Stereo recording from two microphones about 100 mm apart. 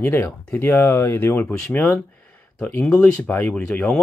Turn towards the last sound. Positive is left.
turn(degrees=10)  # may be behind; listen again after turning